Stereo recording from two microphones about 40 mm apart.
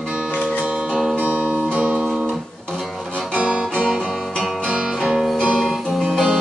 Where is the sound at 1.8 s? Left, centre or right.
Right.